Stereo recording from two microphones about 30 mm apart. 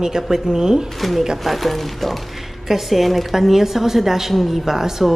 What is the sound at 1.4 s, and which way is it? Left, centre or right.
A woman's voice, centre.